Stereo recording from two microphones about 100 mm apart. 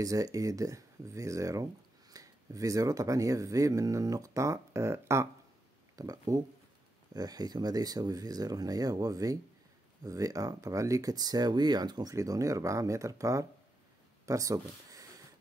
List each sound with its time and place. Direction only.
0.0 s speech: 35° right (ahead or behind)